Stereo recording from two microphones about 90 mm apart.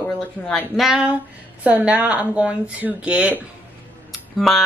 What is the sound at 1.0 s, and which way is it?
Speech, 15° right (ahead or behind).